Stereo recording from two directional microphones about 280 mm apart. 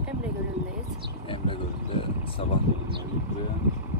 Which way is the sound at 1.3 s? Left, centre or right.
Centre.